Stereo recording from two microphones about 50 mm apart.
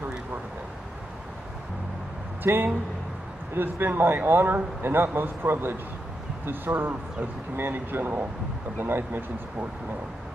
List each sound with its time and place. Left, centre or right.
2.4 s speech: right
3.7 s speech: right
7.5 s speech: right